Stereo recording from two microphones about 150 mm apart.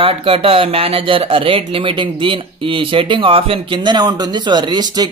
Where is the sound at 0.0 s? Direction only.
40° right (ahead or behind).